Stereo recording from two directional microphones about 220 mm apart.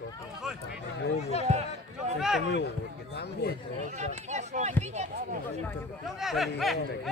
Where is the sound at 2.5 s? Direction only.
50° left (ahead or behind).